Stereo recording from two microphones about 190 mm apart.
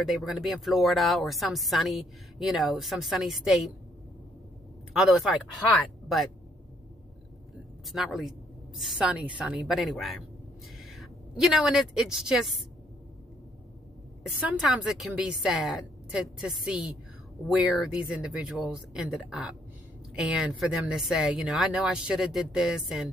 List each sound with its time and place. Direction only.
0.0 s speech: centre (ahead or behind)
4.9 s speech: centre (ahead or behind)
7.8 s a woman's voice: centre (ahead or behind)
14.2 s speech: centre (ahead or behind)